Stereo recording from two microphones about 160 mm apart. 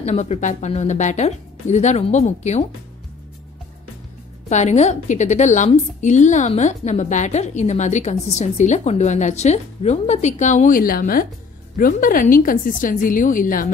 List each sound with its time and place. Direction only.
0.0 s a woman's voice: 45° left (ahead or behind)
4.5 s a woman's voice: 45° left (ahead or behind)